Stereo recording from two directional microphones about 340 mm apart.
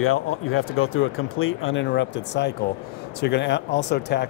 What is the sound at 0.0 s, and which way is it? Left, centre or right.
Speech, left.